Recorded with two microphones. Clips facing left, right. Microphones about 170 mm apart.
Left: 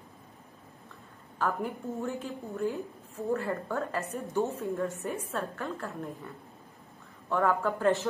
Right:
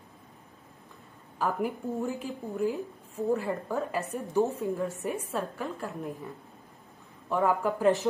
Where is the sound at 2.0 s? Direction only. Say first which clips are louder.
Right 2 dB; 15° right (ahead or behind).